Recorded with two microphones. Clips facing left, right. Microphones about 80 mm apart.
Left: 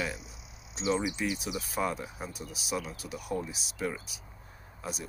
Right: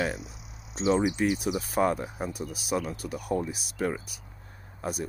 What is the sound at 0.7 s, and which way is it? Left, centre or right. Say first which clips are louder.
Speech: right 6 dB; right.